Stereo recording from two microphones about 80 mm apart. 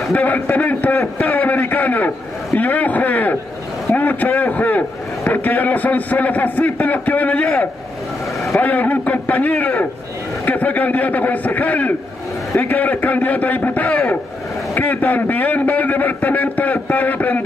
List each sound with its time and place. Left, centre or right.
0.1 s a man's voice: left